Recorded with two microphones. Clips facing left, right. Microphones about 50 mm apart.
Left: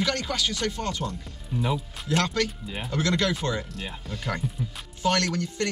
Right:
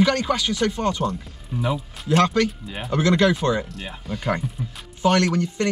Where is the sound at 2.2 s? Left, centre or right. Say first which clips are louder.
Right 8 dB; centre.